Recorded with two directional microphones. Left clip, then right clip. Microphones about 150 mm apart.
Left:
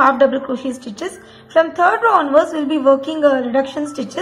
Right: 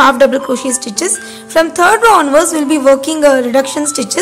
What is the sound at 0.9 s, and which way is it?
Speech, 45° right (ahead or behind).